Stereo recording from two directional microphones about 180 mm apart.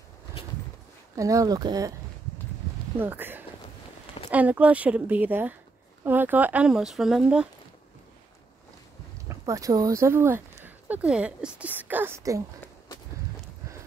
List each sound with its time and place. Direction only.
1.1 s speech: 20° right (ahead or behind)
3.0 s a woman's voice: 10° right (ahead or behind)
9.3 s speech: 20° right (ahead or behind)